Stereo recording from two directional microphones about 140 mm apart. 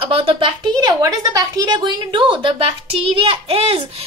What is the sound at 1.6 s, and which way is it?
A child's voice, 30° right (ahead or behind).